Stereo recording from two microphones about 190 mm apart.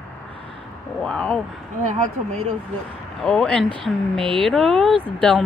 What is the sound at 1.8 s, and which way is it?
Speech, 35° right (ahead or behind).